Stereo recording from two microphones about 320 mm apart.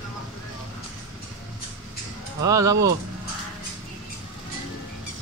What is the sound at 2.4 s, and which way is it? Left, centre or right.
Speech, centre.